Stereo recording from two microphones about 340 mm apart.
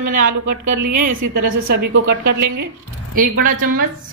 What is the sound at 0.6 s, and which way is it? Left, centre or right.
Speech, right.